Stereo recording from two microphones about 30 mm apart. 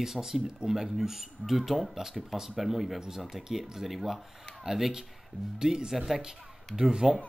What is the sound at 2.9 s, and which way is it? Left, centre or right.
Speech, centre.